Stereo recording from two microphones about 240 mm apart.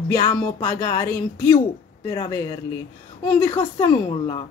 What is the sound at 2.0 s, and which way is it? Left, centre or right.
Speech, centre.